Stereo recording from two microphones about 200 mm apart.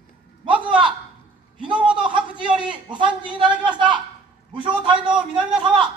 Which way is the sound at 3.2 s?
25° right (ahead or behind).